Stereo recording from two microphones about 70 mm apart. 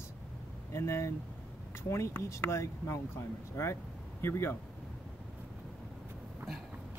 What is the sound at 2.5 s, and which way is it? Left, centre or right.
Speech, left.